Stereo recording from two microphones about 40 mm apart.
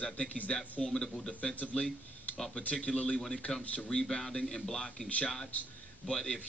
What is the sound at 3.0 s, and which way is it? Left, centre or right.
Speech, left.